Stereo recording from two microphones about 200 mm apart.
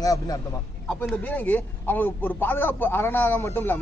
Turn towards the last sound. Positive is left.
turn(degrees=10)  # may be behind; listen again after turning